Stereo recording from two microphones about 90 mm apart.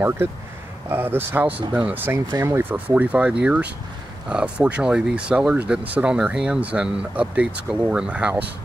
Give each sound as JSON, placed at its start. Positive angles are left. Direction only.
{"t": 0.8, "sound": "speech", "side_deg": -25}
{"t": 2.1, "sound": "speech", "side_deg": -30}
{"t": 2.7, "sound": "speech", "side_deg": -15}